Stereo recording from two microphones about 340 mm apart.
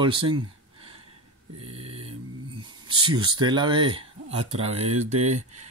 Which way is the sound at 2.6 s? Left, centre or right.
Centre.